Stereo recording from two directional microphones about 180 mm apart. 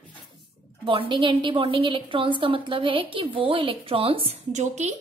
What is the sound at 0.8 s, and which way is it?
A woman's voice, 30° right (ahead or behind).